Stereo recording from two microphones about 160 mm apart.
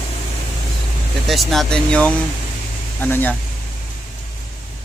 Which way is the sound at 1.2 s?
Centre (ahead or behind).